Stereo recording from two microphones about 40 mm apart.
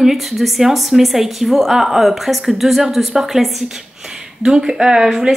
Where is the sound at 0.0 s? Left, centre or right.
Centre.